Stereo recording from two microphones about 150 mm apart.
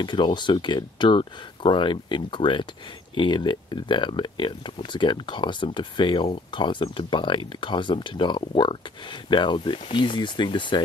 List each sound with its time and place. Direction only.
0.0 s speech: 30° left (ahead or behind)